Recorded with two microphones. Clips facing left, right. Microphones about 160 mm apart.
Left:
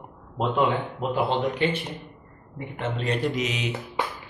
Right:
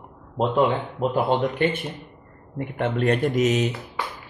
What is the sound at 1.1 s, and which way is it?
Speech, 50° right (ahead or behind).